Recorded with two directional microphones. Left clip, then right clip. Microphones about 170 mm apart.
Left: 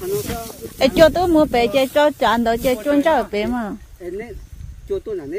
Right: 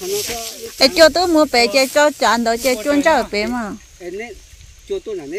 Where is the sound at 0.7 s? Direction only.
5° left (ahead or behind).